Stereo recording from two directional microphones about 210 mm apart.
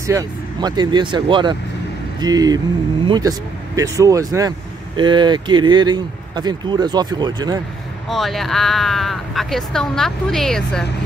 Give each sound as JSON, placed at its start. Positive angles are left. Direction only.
{"t": 0.0, "sound": "speech", "side_deg": -15}
{"t": 8.1, "sound": "speech", "side_deg": 0}